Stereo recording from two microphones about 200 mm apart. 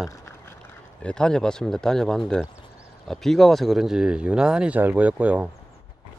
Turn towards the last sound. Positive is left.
turn(degrees=-10)  # may be behind; listen again after turning